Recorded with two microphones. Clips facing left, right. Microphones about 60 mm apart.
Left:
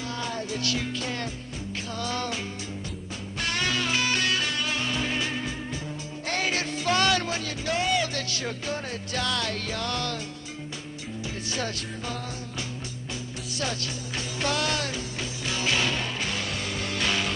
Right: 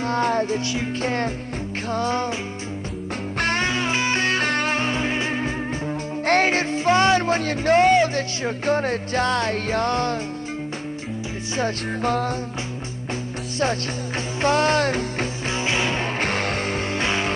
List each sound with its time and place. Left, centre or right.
0.0 s music: right
0.6 s music: right
1.0 s music: right
3.3 s music: right
3.6 s music: right
6.2 s music: right
6.5 s speech: right
12.0 s music: right
14.4 s music: right
15.5 s music: right
16.2 s music: right